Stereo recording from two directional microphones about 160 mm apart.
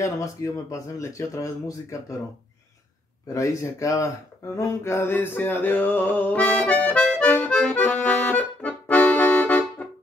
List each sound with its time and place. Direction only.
0.0 s speech: 20° left (ahead or behind)
3.3 s speech: 20° left (ahead or behind)
4.6 s a sound: 20° left (ahead or behind)